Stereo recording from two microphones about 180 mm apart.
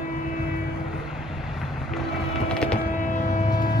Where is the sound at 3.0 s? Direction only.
45° left (ahead or behind).